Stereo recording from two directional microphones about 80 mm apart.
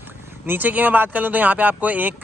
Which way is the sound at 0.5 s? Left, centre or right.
Right.